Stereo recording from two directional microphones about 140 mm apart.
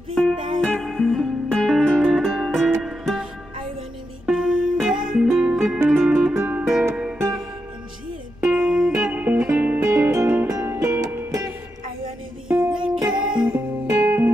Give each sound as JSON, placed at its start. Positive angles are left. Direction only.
{"t": 0.1, "sound": "music", "side_deg": 0}
{"t": 4.3, "sound": "music", "side_deg": -5}
{"t": 8.4, "sound": "music", "side_deg": -5}
{"t": 12.4, "sound": "music", "side_deg": -5}
{"t": 13.2, "sound": "music", "side_deg": -35}
{"t": 13.8, "sound": "music", "side_deg": -20}